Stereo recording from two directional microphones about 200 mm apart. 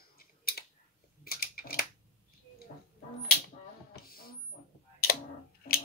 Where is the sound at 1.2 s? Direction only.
50° left (ahead or behind).